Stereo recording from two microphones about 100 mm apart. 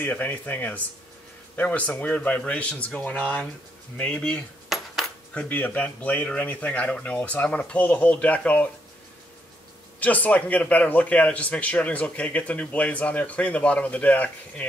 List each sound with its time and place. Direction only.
0.0 s a man's voice: 15° left (ahead or behind)
9.9 s a man's voice: 15° left (ahead or behind)